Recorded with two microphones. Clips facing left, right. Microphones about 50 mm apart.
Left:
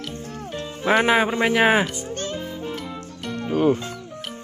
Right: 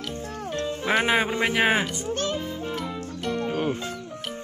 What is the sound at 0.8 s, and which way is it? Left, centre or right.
Speech, centre.